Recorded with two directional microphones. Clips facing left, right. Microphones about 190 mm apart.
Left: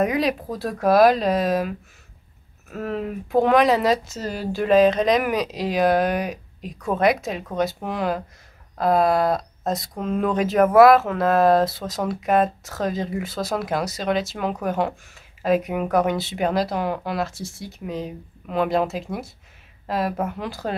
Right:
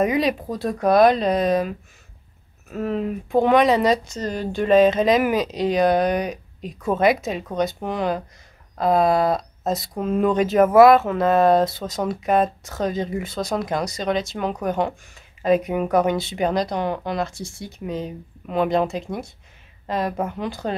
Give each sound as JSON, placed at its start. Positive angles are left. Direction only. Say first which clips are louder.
{"t": 0.0, "sound": "speech", "louder": "right 1 dB", "side_deg": 0}